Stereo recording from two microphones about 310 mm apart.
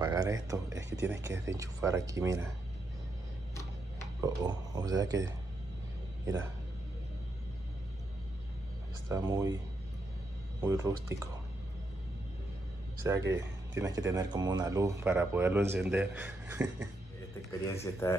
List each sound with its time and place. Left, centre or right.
0.0 s speech: centre
0.7 s speech: right
0.9 s speech: centre
4.2 s speech: centre
9.1 s speech: centre
10.6 s speech: centre
13.3 s speech: centre
17.5 s speech: centre